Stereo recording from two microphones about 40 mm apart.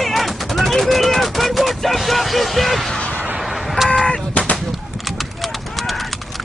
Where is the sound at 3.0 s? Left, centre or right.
Left.